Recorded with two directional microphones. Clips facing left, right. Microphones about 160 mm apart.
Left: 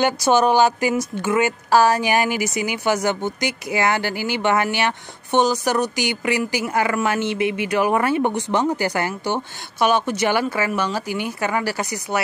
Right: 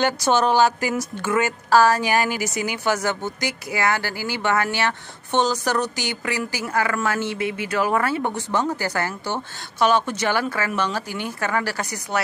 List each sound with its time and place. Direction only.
0.0 s speech: 10° left (ahead or behind)